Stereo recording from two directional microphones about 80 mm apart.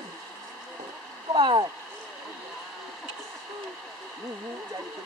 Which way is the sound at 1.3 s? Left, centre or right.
Right.